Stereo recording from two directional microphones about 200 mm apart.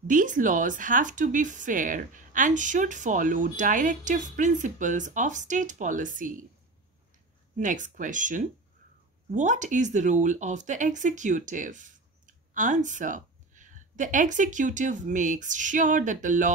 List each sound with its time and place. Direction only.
0.0 s speech: 40° right (ahead or behind)
7.5 s speech: 40° right (ahead or behind)